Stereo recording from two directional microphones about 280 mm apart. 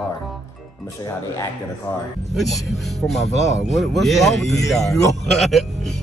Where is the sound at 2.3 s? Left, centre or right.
Centre.